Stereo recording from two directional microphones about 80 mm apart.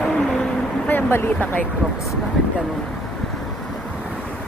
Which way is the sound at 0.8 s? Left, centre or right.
Left.